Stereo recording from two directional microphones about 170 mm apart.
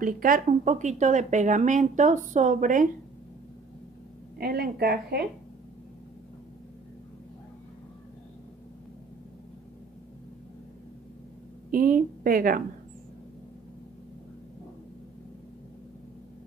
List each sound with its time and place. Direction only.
0.0 s speech: 55° right (ahead or behind)
4.4 s a woman's voice: 60° right (ahead or behind)
11.7 s a woman's voice: 55° right (ahead or behind)